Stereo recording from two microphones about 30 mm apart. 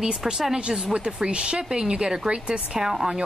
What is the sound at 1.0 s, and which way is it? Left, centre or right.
Speech, right.